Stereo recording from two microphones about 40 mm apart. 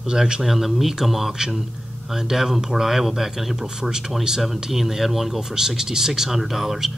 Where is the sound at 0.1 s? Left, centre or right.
Centre.